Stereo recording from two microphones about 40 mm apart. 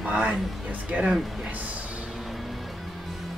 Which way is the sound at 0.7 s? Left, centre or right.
Right.